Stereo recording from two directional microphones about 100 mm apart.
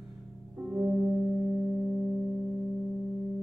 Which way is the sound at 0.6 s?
20° right (ahead or behind).